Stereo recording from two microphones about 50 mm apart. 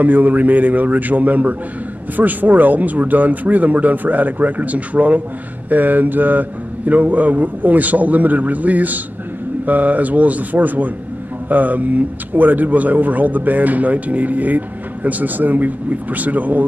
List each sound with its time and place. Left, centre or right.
0.0 s a man's voice: right